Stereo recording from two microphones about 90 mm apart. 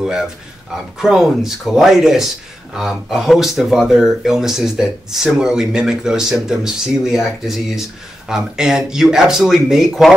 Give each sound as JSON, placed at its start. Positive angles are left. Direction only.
{"t": 0.0, "sound": "a man's voice", "side_deg": -5}